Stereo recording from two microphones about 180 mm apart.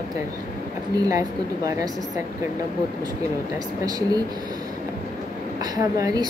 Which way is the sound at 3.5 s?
20° right (ahead or behind).